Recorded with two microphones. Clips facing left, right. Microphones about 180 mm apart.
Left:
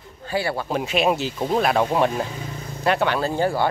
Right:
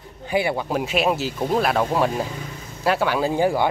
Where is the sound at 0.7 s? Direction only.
5° right (ahead or behind).